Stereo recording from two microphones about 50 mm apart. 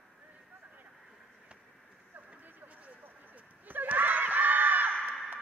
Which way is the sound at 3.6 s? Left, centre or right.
Right.